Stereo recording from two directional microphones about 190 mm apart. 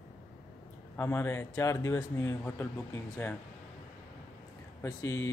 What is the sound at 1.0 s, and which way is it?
Speech, 15° left (ahead or behind).